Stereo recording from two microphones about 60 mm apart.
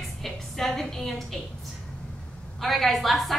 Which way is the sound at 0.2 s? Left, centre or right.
Centre.